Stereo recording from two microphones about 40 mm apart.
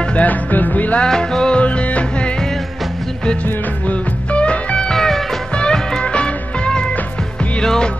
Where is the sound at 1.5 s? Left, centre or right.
Left.